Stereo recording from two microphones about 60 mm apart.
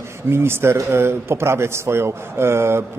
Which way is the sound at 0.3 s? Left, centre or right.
Right.